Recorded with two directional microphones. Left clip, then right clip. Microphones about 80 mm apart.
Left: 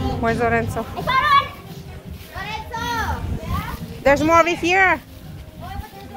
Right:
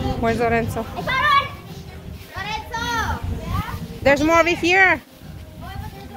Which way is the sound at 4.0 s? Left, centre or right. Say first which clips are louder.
Even; centre.